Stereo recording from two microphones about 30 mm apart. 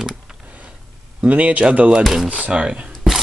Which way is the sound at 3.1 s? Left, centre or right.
Centre.